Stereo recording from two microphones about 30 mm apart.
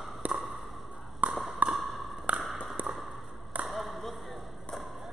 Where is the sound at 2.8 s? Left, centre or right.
Right.